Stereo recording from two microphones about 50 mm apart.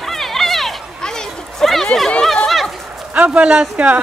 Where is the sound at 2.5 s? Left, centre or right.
Centre.